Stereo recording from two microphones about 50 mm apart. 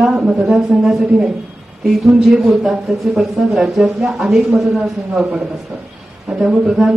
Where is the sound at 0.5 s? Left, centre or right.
Centre.